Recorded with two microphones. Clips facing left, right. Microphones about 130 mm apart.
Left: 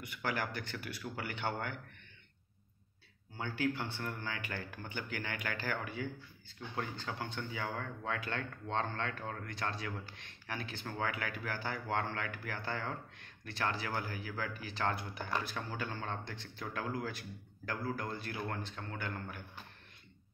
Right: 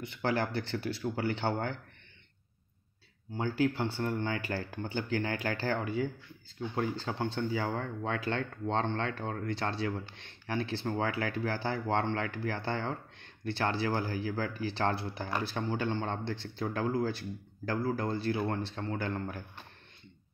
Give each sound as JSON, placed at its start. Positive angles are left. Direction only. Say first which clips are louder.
{"t": 0.0, "sound": "speech", "louder": "right 6 dB", "side_deg": -30}
{"t": 3.3, "sound": "speech", "louder": "right 6 dB", "side_deg": -30}